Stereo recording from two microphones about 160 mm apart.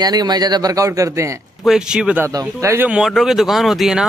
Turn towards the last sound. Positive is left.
turn(degrees=0)  # may be behind; listen again after turning